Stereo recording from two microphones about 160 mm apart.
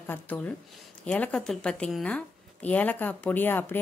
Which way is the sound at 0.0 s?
10° left (ahead or behind).